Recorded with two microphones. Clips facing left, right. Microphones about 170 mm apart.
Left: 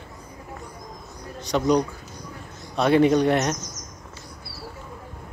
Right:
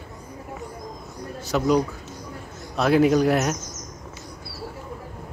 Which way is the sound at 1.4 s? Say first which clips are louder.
Even; 5° right (ahead or behind).